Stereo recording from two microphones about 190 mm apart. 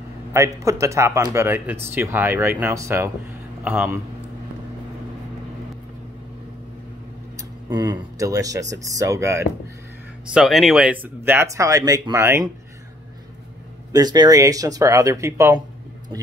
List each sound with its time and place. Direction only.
0.3 s speech: 15° right (ahead or behind)
7.3 s speech: 20° right (ahead or behind)
10.3 s speech: centre (ahead or behind)
13.9 s speech: 20° right (ahead or behind)